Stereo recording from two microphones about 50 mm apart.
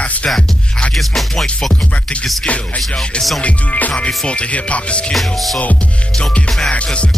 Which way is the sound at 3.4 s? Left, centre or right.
Left.